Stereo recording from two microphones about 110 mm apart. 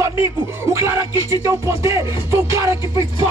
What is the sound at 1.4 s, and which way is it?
Music, 30° right (ahead or behind).